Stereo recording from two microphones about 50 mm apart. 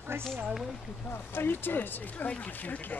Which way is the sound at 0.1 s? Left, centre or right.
Right.